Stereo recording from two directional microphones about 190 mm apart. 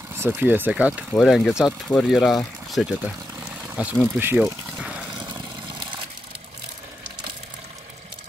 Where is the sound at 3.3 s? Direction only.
10° right (ahead or behind).